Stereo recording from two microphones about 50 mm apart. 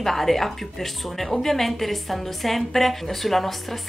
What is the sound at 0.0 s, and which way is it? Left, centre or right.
Speech, centre.